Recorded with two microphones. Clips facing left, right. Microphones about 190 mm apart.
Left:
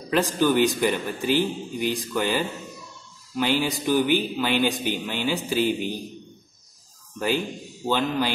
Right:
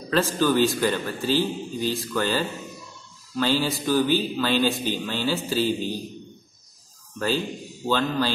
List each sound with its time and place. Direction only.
0.1 s a man's voice: 15° left (ahead or behind)
7.2 s a man's voice: 15° left (ahead or behind)